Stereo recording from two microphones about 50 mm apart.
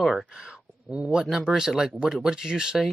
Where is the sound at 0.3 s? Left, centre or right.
Centre.